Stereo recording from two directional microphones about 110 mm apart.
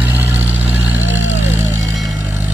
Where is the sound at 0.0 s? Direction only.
15° right (ahead or behind).